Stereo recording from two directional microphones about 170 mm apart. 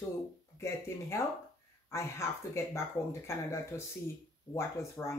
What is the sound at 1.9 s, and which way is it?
Speech, 15° left (ahead or behind).